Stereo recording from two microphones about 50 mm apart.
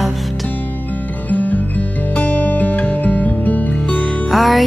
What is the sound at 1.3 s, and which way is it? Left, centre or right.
Music, left.